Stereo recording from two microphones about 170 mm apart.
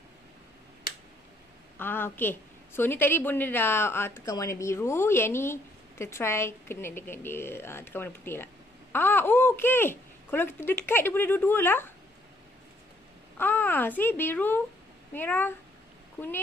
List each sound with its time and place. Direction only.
1.8 s a woman's voice: 10° left (ahead or behind)
13.4 s a child's voice: 10° left (ahead or behind)